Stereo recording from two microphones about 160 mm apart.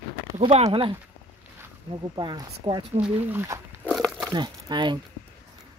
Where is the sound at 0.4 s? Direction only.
40° right (ahead or behind).